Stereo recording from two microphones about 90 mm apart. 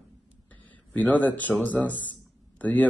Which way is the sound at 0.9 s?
20° left (ahead or behind).